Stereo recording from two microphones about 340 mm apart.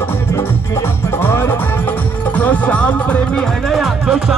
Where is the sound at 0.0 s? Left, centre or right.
Centre.